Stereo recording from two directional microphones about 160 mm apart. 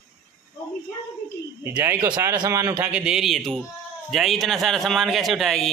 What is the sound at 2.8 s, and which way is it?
A man's voice, 5° right (ahead or behind).